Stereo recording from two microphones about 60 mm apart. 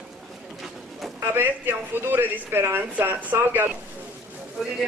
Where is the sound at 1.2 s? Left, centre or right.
Right.